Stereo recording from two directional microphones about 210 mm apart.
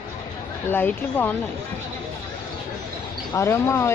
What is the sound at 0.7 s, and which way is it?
Speech, 10° left (ahead or behind).